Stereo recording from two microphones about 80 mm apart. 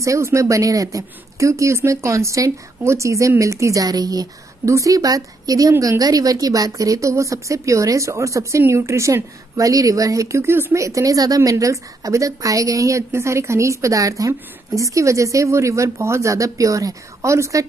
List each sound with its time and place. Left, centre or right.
0.0 s speech: right
3.8 s a woman's voice: right